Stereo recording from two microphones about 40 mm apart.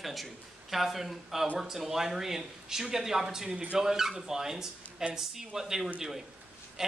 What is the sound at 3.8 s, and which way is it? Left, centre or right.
Speech, centre.